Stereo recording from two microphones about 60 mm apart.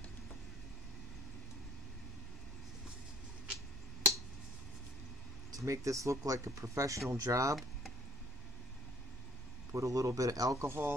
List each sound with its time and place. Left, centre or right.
5.5 s speech: right
9.7 s speech: right